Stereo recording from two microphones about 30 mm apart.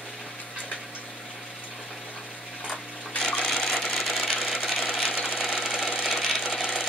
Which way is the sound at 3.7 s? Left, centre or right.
Left.